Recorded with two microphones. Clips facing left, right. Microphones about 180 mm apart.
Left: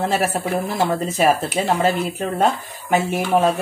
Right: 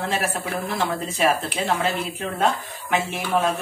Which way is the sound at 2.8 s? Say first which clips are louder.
Left 5 dB; 45° left (ahead or behind).